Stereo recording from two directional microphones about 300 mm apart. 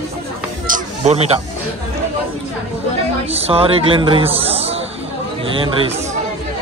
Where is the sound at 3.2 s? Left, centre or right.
Centre.